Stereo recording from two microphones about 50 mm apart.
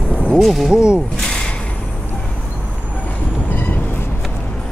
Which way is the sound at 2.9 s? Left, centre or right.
Left.